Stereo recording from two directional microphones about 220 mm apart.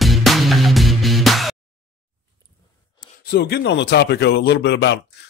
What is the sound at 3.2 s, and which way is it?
Speech, 45° left (ahead or behind).